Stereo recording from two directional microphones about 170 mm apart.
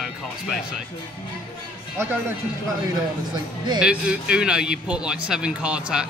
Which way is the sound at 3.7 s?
5° right (ahead or behind).